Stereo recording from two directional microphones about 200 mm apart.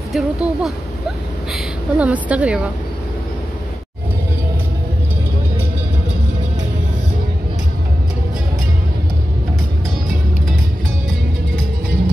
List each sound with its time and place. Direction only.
0.1 s a woman's voice: centre (ahead or behind)